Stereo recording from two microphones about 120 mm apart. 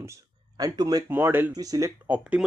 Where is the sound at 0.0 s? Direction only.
25° right (ahead or behind).